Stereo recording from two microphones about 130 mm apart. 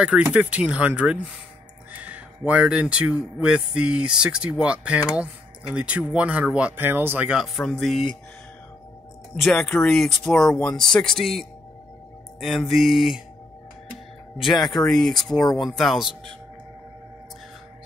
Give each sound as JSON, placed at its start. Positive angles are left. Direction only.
{"t": 0.3, "sound": "speech", "side_deg": -10}
{"t": 9.4, "sound": "speech", "side_deg": 5}
{"t": 14.4, "sound": "speech", "side_deg": 35}
{"t": 14.7, "sound": "speech", "side_deg": 5}
{"t": 15.4, "sound": "speech", "side_deg": 30}
{"t": 15.8, "sound": "speech", "side_deg": 0}